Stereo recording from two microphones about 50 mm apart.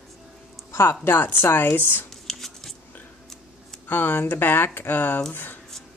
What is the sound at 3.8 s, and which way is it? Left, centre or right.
Speech, left.